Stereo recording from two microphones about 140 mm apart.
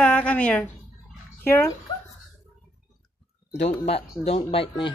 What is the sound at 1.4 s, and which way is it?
Speech, 20° left (ahead or behind).